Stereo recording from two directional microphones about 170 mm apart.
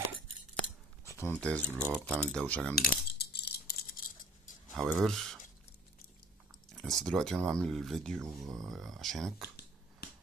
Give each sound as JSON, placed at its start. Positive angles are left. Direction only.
{"t": 1.0, "sound": "speech", "side_deg": 15}
{"t": 1.8, "sound": "speech", "side_deg": -5}
{"t": 2.7, "sound": "a sound", "side_deg": 70}
{"t": 4.7, "sound": "speech", "side_deg": 0}
{"t": 6.7, "sound": "speech", "side_deg": 0}